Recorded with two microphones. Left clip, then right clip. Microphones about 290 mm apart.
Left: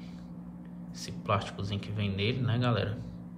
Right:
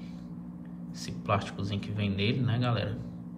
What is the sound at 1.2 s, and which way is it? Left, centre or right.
A man's voice, centre.